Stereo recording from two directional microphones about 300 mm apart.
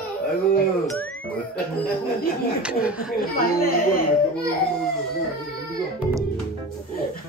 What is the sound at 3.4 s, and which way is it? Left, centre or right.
Speech, left.